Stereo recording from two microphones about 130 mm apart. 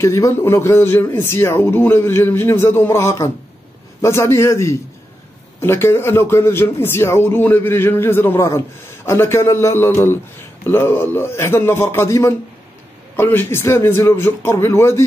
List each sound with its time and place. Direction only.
0.0 s a man's voice: 20° left (ahead or behind)